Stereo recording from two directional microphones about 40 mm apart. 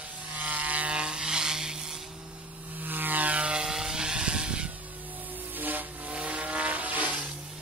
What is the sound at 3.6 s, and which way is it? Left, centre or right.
Vehicle, centre.